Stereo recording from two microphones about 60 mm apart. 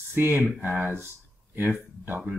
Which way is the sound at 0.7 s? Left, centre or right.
Right.